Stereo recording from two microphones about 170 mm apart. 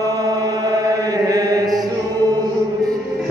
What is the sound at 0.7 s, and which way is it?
Mantra, 20° right (ahead or behind).